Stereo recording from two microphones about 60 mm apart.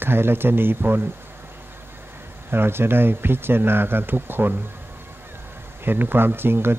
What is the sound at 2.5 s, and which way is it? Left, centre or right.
Speech, right.